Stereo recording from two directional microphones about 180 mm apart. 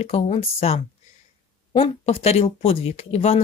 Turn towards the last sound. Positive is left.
turn(degrees=35)  # may be behind; listen again after turning